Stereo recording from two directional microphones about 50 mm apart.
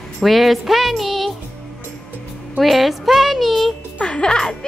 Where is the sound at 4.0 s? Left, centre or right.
Centre.